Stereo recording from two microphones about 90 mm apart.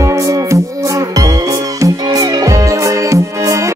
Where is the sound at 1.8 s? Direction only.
40° right (ahead or behind).